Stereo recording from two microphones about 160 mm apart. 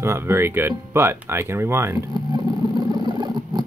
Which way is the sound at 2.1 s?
25° right (ahead or behind).